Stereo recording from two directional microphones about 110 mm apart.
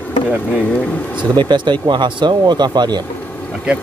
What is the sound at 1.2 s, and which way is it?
Speech, 45° right (ahead or behind).